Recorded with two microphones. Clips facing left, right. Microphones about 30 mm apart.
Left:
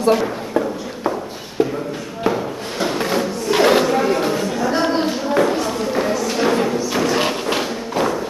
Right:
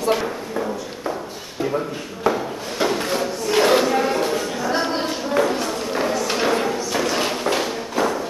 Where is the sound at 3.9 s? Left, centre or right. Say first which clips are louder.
Left 2 dB; centre.